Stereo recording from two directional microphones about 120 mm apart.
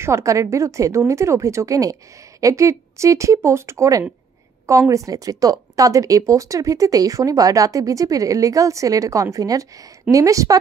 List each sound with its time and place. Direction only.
0.0 s speech: 25° right (ahead or behind)